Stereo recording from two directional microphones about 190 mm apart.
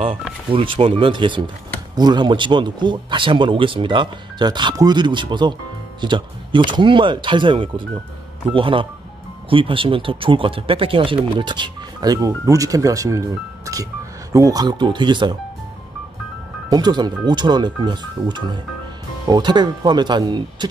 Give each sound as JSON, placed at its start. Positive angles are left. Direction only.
{"t": 0.5, "sound": "speech", "side_deg": -30}
{"t": 16.6, "sound": "speech", "side_deg": -20}